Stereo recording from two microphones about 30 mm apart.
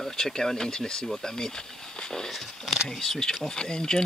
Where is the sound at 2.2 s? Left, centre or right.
Centre.